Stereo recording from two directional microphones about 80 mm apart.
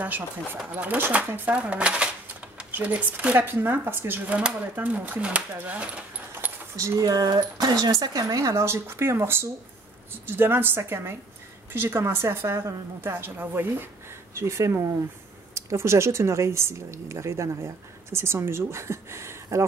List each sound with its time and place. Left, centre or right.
0.7 s speech: right
4.4 s speech: centre
6.8 s a woman's voice: right